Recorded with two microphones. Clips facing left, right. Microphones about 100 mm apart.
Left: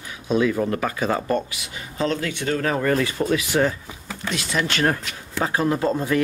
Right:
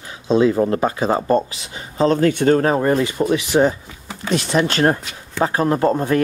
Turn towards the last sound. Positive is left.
turn(degrees=-45)  # may be behind; listen again after turning